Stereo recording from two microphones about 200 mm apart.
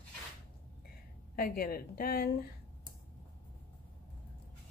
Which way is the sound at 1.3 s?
50° left (ahead or behind).